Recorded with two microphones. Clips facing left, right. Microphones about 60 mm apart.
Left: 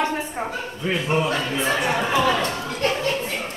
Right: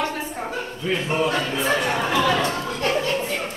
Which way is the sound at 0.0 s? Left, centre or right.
Left.